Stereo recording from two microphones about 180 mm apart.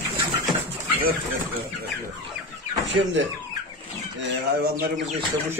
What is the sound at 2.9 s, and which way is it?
Speech, 90° right.